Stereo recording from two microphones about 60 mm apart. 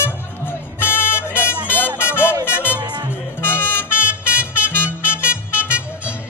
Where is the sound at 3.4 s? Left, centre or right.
Left.